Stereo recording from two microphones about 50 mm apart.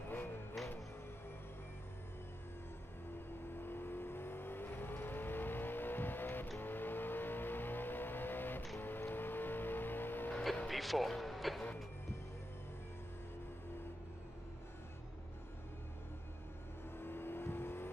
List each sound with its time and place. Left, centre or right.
0.1 s music: left
3.5 s vehicle: left
10.7 s music: centre
17.0 s vehicle: left